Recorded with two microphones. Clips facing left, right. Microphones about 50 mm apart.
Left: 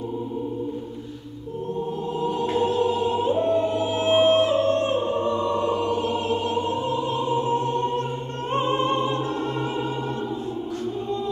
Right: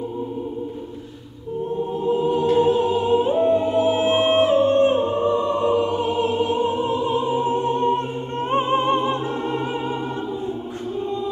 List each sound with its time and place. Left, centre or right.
2.0 s choir: centre
2.5 s music: centre